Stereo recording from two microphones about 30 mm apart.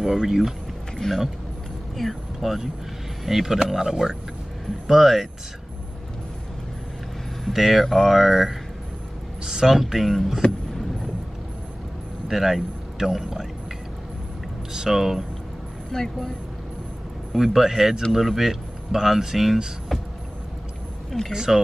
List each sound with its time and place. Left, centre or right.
0.0 s speech: centre
1.0 s speech: centre
2.0 s speech: centre
4.8 s speech: centre
7.5 s speech: centre
10.0 s speech: centre
12.3 s speech: centre
14.7 s speech: centre
15.9 s speech: centre
17.3 s speech: centre
21.3 s speech: centre